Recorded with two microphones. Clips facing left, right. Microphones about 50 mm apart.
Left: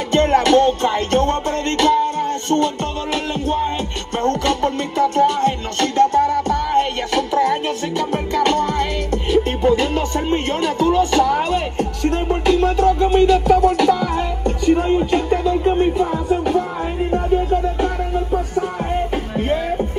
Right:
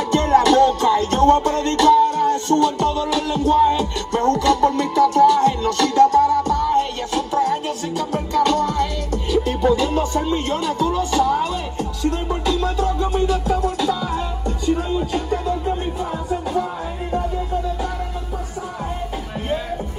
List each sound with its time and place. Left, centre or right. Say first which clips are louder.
0.1 s music: left 1 dB; left